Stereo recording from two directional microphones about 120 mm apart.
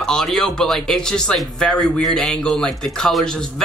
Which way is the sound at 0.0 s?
5° left (ahead or behind).